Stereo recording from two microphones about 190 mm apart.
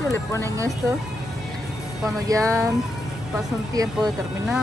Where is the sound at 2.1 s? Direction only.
20° right (ahead or behind).